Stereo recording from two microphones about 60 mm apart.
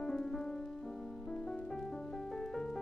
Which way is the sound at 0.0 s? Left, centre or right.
Centre.